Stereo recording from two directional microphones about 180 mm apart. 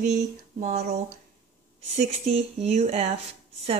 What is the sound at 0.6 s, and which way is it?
Speech, 45° right (ahead or behind).